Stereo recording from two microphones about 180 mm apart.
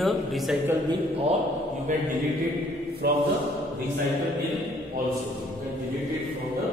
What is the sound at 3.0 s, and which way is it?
Speech, 60° right (ahead or behind).